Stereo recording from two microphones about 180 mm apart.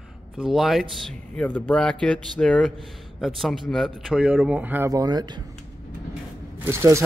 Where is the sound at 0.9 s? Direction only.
5° left (ahead or behind); by 5.5 s 20° right (ahead or behind).